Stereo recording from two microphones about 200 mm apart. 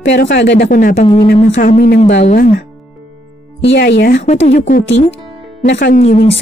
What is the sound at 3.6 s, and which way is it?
Speech, 60° left (ahead or behind).